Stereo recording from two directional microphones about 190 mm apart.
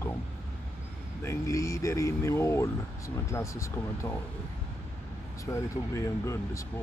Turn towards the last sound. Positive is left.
turn(degrees=15)  # may be behind; listen again after turning